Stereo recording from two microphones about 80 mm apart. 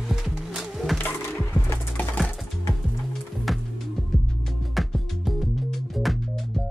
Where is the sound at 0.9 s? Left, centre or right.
Left.